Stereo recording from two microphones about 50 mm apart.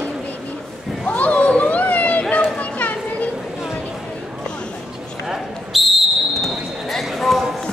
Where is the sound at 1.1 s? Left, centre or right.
Left.